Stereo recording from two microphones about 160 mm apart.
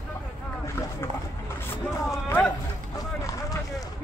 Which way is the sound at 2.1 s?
15° left (ahead or behind).